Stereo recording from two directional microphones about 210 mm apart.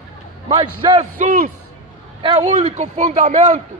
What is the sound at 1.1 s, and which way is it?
Speech, 40° right (ahead or behind).